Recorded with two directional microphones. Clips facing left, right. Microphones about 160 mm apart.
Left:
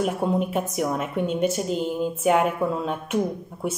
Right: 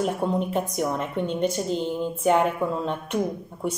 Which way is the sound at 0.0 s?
5° left (ahead or behind).